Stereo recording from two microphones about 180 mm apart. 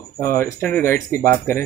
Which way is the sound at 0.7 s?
15° left (ahead or behind).